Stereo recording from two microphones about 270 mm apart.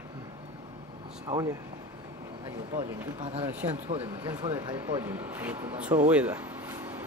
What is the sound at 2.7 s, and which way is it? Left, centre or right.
Speech, right.